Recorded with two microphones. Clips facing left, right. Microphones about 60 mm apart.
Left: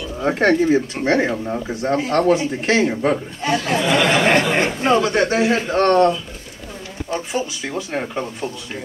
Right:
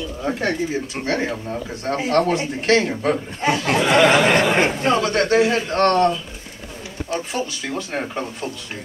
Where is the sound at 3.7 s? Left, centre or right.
Right.